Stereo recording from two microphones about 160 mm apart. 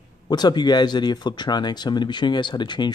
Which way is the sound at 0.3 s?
25° left (ahead or behind).